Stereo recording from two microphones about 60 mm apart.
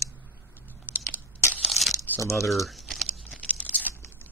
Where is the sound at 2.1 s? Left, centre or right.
Left.